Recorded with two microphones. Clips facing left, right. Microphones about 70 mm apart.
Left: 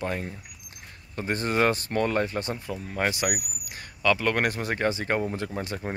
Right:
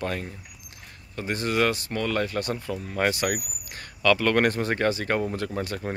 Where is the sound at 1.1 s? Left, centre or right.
Left.